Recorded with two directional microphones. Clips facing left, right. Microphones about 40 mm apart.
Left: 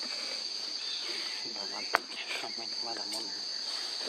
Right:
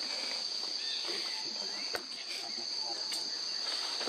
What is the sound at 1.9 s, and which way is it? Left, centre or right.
Speech, left.